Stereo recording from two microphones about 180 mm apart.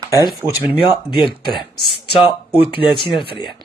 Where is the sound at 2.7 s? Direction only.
30° left (ahead or behind).